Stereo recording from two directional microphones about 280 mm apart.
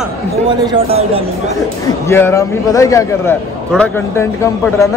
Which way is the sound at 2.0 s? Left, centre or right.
Centre.